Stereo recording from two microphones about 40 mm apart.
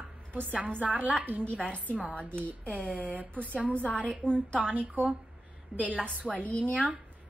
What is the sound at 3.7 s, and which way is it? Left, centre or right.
Speech, left.